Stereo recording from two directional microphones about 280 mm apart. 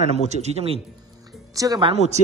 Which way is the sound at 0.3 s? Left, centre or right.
Right.